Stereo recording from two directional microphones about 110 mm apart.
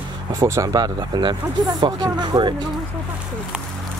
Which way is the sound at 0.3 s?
30° right (ahead or behind).